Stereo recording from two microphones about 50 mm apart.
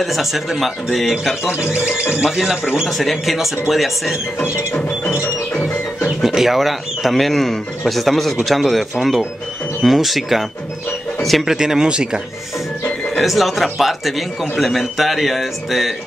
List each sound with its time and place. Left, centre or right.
0.0 s speech: centre
1.6 s speech: centre
2.9 s speech: centre
4.4 s music: centre
6.0 s speech: centre
11.4 s speech: centre
13.2 s speech: centre